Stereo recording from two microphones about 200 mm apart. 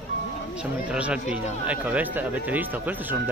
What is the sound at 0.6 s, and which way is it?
Speech, 5° right (ahead or behind).